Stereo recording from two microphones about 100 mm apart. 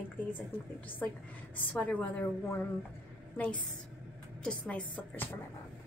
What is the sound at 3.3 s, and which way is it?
Speech, 15° left (ahead or behind).